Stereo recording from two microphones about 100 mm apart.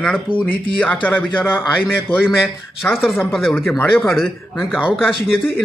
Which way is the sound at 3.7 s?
20° left (ahead or behind).